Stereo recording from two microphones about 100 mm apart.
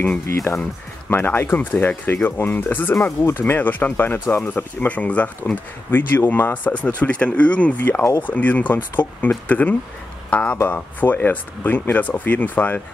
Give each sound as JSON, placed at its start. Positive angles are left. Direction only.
{"t": 0.0, "sound": "speech", "side_deg": 20}